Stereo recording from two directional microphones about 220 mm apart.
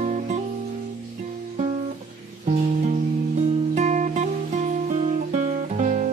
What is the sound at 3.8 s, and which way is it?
Music, 35° right (ahead or behind).